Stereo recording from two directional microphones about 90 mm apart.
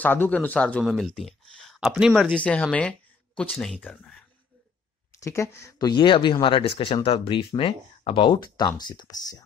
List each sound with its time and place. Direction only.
0.0 s a man's voice: 20° left (ahead or behind); by 1.9 s 5° left (ahead or behind)
1.9 s speech: 5° right (ahead or behind)
2.2 s speech: 10° left (ahead or behind)
5.2 s speech: 30° left (ahead or behind)
5.8 s speech: 50° left (ahead or behind); by 8.4 s 80° left
8.5 s speech: 50° left (ahead or behind)